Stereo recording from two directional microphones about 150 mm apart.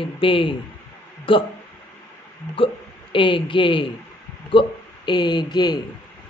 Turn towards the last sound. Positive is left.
turn(degrees=30)  # may be behind; listen again after turning